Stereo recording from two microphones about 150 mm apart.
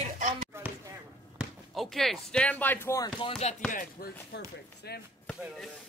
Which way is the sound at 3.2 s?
35° left (ahead or behind).